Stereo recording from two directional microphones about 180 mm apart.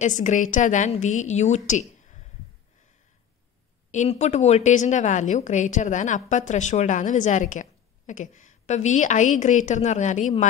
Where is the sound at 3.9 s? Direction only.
40° left (ahead or behind).